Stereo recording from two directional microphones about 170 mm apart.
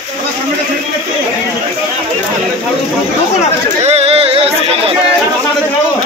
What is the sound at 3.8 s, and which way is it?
Speech, 40° right (ahead or behind).